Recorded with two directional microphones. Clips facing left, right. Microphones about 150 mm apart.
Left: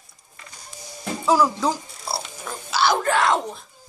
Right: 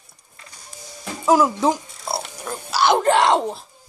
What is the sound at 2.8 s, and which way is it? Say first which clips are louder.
Speech: right 4 dB; 30° right (ahead or behind).